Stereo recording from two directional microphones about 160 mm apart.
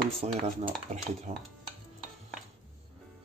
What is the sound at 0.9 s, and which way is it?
Stir, 40° right (ahead or behind).